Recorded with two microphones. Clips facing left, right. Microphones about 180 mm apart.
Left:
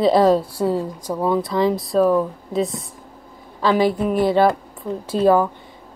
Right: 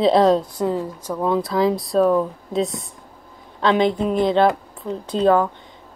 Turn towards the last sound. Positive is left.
turn(degrees=10)  # may be behind; listen again after turning